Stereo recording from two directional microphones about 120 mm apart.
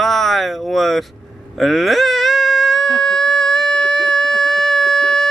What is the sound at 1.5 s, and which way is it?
Whimper, centre (ahead or behind).